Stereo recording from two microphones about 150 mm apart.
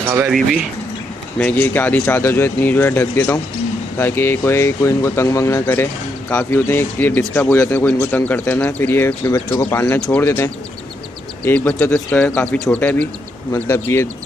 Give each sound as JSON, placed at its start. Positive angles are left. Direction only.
{"t": 0.0, "sound": "speech", "side_deg": -15}
{"t": 0.3, "sound": "speech", "side_deg": 0}
{"t": 1.4, "sound": "speech", "side_deg": 10}
{"t": 9.9, "sound": "speech", "side_deg": 5}
{"t": 10.2, "sound": "speech", "side_deg": 15}